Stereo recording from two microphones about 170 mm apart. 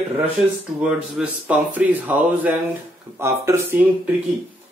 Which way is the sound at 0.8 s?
5° right (ahead or behind).